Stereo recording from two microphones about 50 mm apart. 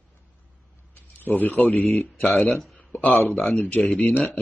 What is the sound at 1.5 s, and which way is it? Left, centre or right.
Speech, left.